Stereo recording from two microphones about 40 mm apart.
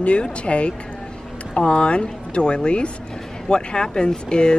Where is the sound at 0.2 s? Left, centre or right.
Left.